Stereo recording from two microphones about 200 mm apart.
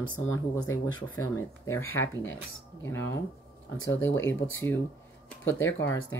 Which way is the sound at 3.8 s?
10° left (ahead or behind).